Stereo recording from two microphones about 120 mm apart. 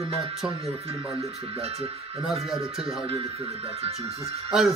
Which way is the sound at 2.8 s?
50° right (ahead or behind).